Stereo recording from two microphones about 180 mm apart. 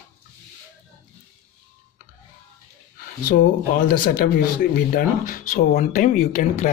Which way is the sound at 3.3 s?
50° left (ahead or behind).